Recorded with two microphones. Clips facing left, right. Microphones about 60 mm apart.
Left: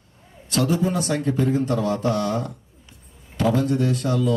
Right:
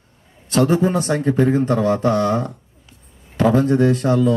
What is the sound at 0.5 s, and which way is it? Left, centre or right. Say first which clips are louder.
Speech: right 5 dB; right.